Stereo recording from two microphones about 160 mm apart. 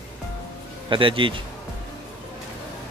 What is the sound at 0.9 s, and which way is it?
Speech, 30° right (ahead or behind).